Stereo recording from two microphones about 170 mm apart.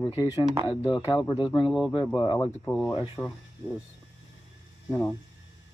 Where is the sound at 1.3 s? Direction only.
30° left (ahead or behind).